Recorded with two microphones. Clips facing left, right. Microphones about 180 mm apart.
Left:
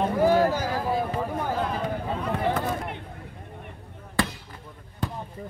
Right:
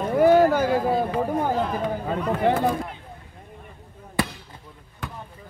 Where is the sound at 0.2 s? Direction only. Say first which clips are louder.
Right 6 dB; 60° right (ahead or behind).